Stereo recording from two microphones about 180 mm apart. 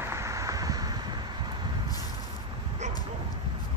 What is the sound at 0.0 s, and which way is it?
Vehicle, 15° right (ahead or behind).